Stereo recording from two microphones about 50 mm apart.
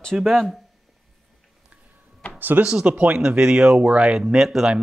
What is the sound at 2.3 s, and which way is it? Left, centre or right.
Speech, right.